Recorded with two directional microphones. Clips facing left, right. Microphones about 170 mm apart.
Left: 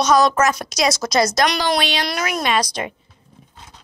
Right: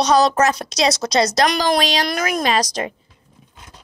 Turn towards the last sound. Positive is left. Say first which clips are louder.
# left 1 dB
turn(degrees=-85)